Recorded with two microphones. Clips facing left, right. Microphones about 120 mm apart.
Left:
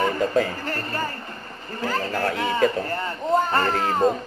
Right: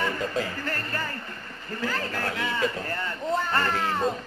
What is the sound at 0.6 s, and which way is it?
A man's voice, 40° left (ahead or behind).